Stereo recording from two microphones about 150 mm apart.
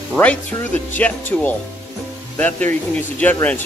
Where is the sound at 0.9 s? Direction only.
10° left (ahead or behind).